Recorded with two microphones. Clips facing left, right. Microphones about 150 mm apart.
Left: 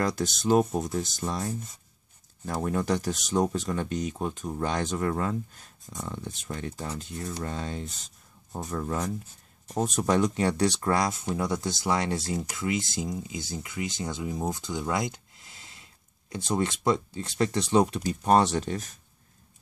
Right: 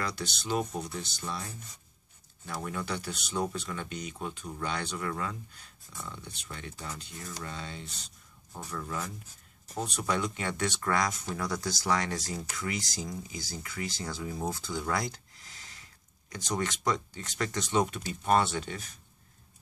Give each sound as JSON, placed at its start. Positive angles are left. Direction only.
{"t": 0.0, "sound": "speech", "side_deg": 45}
{"t": 2.6, "sound": "speech", "side_deg": 40}